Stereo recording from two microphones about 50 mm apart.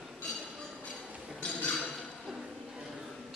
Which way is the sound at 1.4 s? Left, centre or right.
Left.